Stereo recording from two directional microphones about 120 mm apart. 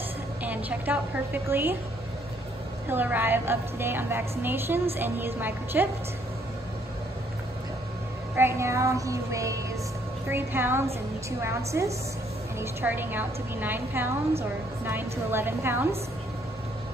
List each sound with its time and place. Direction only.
0.4 s a woman's voice: 15° right (ahead or behind)
2.9 s a woman's voice: 15° right (ahead or behind)
8.4 s a woman's voice: 20° right (ahead or behind)